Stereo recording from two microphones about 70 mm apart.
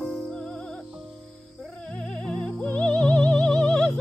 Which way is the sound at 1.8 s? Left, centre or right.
Centre.